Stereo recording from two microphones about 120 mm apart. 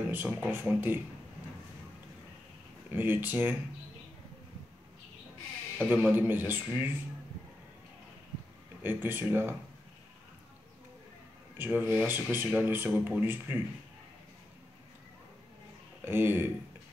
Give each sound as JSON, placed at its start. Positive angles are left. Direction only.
{"t": 0.1, "sound": "speech", "side_deg": -15}
{"t": 2.9, "sound": "speech", "side_deg": -15}
{"t": 5.9, "sound": "speech", "side_deg": -15}
{"t": 8.8, "sound": "speech", "side_deg": -15}
{"t": 11.5, "sound": "speech", "side_deg": -15}
{"t": 16.0, "sound": "speech", "side_deg": -20}